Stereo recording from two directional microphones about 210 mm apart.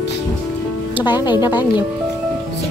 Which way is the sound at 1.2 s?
20° left (ahead or behind).